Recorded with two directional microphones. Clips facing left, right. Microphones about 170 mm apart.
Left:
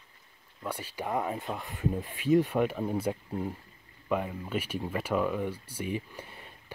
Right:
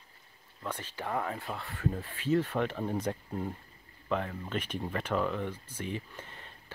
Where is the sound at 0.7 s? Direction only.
10° left (ahead or behind).